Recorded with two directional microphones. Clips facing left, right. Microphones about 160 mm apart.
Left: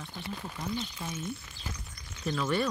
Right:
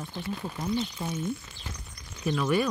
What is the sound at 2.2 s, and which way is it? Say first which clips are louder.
Speech: right 4 dB; 10° right (ahead or behind).